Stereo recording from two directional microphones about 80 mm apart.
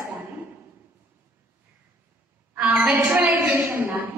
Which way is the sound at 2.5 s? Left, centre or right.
Centre.